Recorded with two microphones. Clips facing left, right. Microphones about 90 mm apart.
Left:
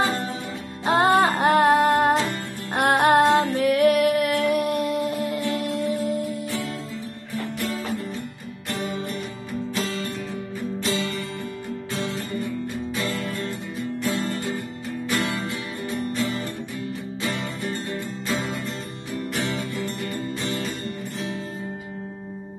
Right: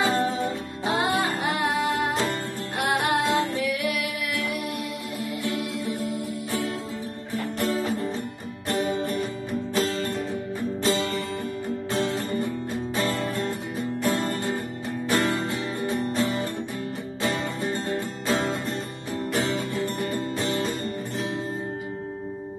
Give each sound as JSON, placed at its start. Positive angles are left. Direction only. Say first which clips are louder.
{"t": 0.8, "sound": "music", "louder": "left 6 dB", "side_deg": 45}
{"t": 7.5, "sound": "music", "louder": "right 4 dB", "side_deg": -40}
{"t": 8.6, "sound": "guitar", "louder": "right 3 dB", "side_deg": -35}
{"t": 10.8, "sound": "music", "louder": "right 2 dB", "side_deg": -35}
{"t": 15.0, "sound": "music", "louder": "right 2 dB", "side_deg": -35}
{"t": 17.2, "sound": "music", "louder": "right 3 dB", "side_deg": -35}